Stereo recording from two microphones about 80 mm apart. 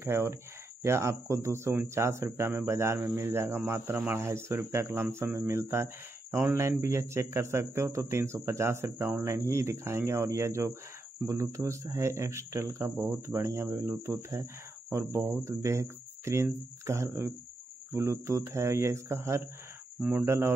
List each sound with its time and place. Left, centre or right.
0.0 s speech: right
20.0 s speech: centre
20.2 s speech: right